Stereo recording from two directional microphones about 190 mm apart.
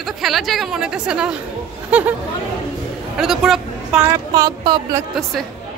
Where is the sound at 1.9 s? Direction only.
5° right (ahead or behind).